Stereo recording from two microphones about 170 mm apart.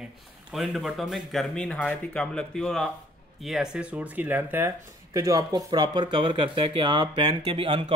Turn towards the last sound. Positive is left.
turn(degrees=-30)  # may be behind; listen again after turning